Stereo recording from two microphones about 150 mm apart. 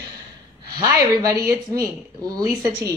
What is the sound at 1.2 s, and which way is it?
Speech, 20° right (ahead or behind).